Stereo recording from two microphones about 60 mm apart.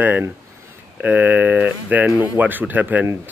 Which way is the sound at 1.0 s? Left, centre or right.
Right.